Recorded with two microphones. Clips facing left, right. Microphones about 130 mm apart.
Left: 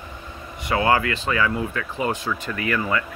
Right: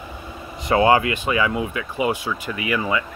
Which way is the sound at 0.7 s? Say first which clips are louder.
Right 4 dB; 25° right (ahead or behind).